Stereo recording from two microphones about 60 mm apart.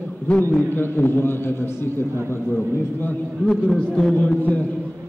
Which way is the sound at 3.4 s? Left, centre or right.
Centre.